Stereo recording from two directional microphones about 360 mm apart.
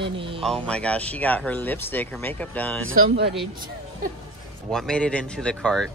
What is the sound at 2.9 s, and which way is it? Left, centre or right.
Speech, right.